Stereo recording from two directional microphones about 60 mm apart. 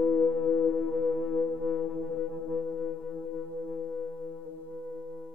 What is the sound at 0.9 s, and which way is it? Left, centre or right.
Music, right.